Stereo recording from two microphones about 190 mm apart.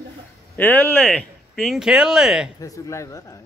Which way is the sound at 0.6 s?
10° left (ahead or behind).